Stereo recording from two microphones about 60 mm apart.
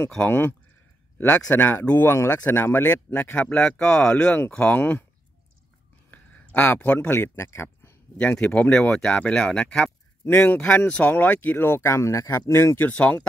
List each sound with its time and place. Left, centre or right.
0.3 s speech: left
3.3 s speech: centre
6.0 s a sound: left
6.7 s speech: left
7.2 s speech: left
8.2 s speech: left
10.2 s speech: left
10.9 s speech: centre
11.1 s speech: left
11.8 s speech: left